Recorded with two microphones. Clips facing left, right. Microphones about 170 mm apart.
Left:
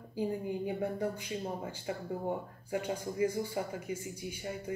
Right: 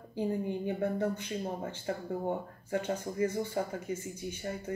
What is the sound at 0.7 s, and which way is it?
Speech, 10° left (ahead or behind).